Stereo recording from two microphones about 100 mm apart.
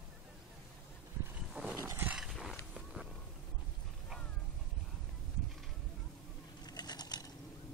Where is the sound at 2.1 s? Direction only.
Centre (ahead or behind).